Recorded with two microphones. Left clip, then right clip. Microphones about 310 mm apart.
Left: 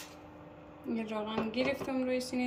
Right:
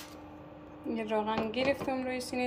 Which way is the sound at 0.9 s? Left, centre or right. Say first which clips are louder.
Right 5 dB; centre.